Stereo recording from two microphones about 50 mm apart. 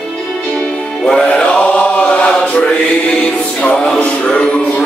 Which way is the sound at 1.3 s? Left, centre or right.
Left.